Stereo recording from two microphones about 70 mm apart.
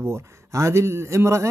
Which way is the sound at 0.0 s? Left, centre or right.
Right.